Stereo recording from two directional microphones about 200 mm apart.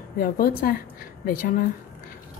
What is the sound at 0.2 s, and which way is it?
A woman's voice, 45° left (ahead or behind).